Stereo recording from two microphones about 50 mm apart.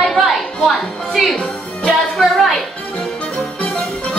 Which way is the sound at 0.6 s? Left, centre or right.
Centre.